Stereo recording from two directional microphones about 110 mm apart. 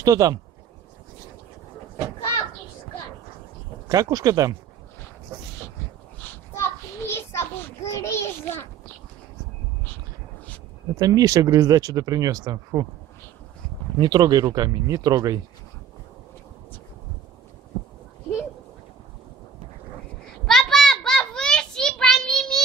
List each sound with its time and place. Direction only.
0.0 s speech: 35° right (ahead or behind)
3.9 s speech: 35° right (ahead or behind)
6.2 s a sound: 20° left (ahead or behind)
11.0 s speech: 35° right (ahead or behind)
13.9 s speech: 40° right (ahead or behind)
20.4 s a sound: 5° left (ahead or behind)